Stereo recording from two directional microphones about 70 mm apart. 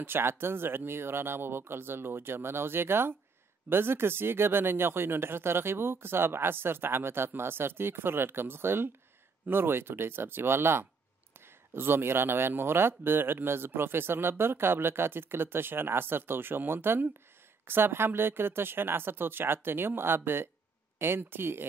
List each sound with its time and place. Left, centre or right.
0.0 s speech: right